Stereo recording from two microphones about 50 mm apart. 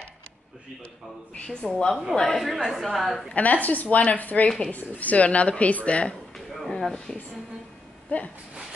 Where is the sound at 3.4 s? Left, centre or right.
Left.